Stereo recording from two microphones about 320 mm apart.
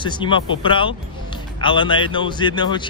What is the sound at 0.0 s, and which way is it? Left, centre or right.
Speech, centre.